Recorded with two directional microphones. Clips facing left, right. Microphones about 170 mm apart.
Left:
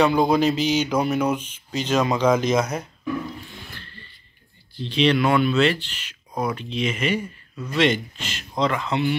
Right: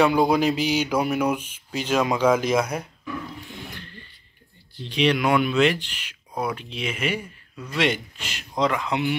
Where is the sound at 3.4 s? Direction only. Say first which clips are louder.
Right 3 dB; 15° right (ahead or behind).